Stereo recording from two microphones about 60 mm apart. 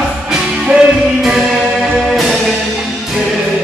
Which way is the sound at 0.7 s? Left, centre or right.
Centre.